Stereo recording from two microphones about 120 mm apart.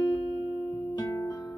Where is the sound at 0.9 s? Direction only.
30° left (ahead or behind).